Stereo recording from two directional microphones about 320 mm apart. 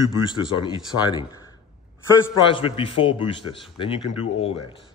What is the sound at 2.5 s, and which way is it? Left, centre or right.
Speech, centre.